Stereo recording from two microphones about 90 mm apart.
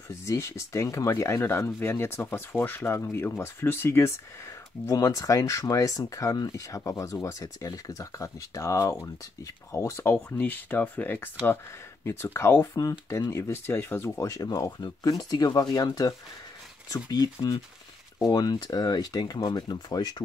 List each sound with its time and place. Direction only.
0.1 s speech: 30° left (ahead or behind)
4.8 s speech: 40° left (ahead or behind)
10.3 s speech: 20° left (ahead or behind)
12.7 s speech: 40° left (ahead or behind)